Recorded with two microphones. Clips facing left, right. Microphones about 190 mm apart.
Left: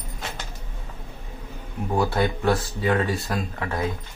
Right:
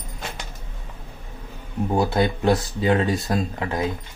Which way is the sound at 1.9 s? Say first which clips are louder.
Right 2 dB; 20° right (ahead or behind).